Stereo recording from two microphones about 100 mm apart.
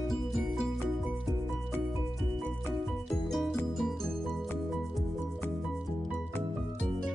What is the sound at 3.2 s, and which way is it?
Music, centre (ahead or behind).